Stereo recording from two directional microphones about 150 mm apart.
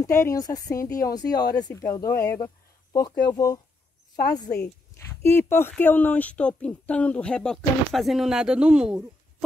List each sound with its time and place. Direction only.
0.0 s speech: 20° left (ahead or behind)
4.9 s speech: 15° left (ahead or behind); by 9.0 s 5° right (ahead or behind)